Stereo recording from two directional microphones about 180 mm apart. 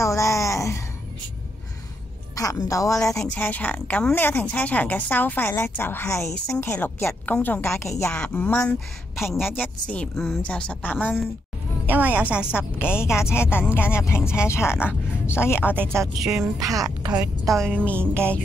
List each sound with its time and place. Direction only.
0.0 s a sound: 15° left (ahead or behind)
2.3 s a woman's voice: 20° left (ahead or behind)
3.2 s a woman's voice: 10° left (ahead or behind)
11.8 s a woman's voice: 10° right (ahead or behind)
13.3 s a woman's voice: 15° left (ahead or behind)
15.7 s a woman's voice: 10° right (ahead or behind)
17.1 s a woman's voice: centre (ahead or behind)